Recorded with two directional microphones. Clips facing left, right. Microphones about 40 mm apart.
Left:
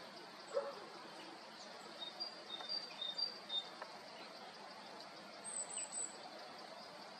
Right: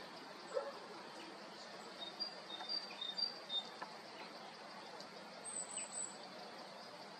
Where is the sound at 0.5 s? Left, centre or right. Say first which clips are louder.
Left 1 dB; centre.